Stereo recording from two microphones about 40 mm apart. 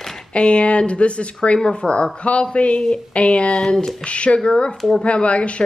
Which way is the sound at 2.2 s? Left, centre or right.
Left.